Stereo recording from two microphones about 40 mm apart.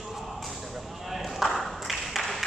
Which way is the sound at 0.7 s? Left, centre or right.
Centre.